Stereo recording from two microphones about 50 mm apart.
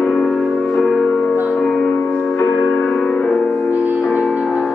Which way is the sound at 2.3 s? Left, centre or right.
Left.